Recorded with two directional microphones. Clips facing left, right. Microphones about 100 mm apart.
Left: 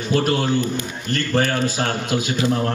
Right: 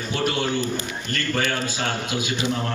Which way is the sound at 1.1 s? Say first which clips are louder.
Left 5 dB; 30° left (ahead or behind).